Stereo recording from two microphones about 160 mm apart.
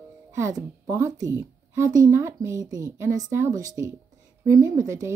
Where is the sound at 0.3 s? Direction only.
20° right (ahead or behind).